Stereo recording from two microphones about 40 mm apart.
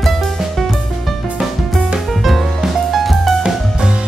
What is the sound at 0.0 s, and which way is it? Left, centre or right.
Music, centre.